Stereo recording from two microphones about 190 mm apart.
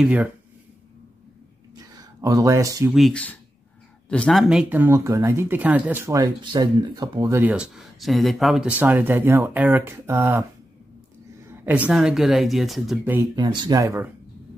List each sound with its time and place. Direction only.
0.0 s speech: 5° right (ahead or behind)
1.8 s a sound: 20° right (ahead or behind)
2.9 s speech: 5° left (ahead or behind)
13.4 s speech: 20° right (ahead or behind)